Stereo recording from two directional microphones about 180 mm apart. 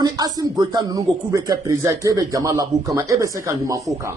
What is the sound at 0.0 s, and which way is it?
Speech, 20° right (ahead or behind).